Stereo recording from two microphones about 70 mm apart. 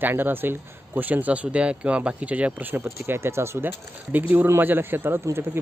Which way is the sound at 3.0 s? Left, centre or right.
Right.